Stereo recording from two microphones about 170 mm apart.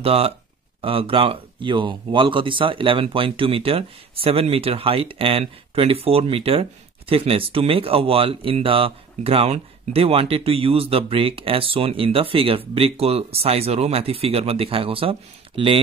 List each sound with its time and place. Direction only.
0.0 s speech: 35° right (ahead or behind)